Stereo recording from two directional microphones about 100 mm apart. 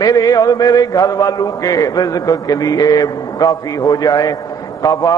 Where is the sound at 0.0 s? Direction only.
40° left (ahead or behind).